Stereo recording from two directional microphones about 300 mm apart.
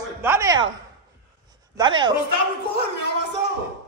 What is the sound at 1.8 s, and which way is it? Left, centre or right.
Speech, centre.